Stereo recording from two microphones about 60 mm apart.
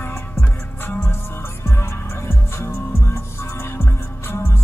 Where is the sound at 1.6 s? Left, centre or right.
Left.